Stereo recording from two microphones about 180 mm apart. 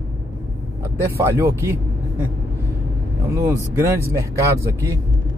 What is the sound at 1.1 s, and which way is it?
Speech, 15° right (ahead or behind).